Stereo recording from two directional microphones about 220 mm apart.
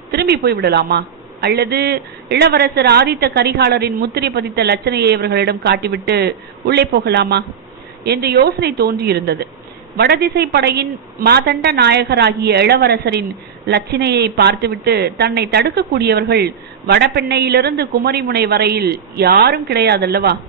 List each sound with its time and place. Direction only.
0.1 s a woman's voice: 45° right (ahead or behind)